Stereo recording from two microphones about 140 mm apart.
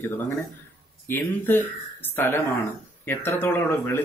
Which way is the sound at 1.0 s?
15° left (ahead or behind).